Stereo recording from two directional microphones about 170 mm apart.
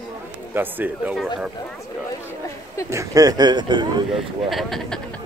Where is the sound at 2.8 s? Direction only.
20° right (ahead or behind).